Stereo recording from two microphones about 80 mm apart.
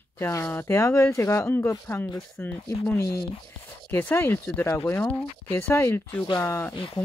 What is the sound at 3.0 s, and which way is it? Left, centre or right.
Speech, left.